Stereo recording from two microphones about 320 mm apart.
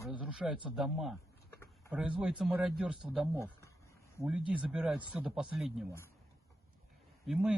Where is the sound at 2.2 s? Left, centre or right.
Centre.